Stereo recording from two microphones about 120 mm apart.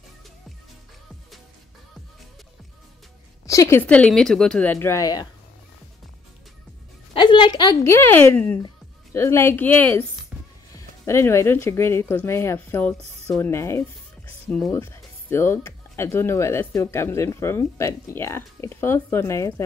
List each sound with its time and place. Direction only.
3.4 s a woman's voice: 25° left (ahead or behind)
3.8 s a woman's voice: 10° left (ahead or behind); by 5.3 s 30° left (ahead or behind)
7.2 s a sound: 40° left (ahead or behind)
7.8 s speech: 20° left (ahead or behind)
10.3 s music: 10° right (ahead or behind)
10.7 s speech: 25° left (ahead or behind)